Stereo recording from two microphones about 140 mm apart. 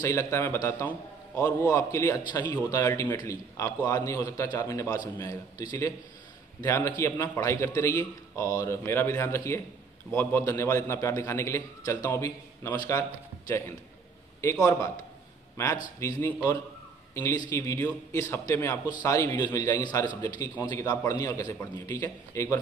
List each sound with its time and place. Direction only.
0.0 s a man's voice: 20° left (ahead or behind)
12.7 s a man's voice: 30° left (ahead or behind)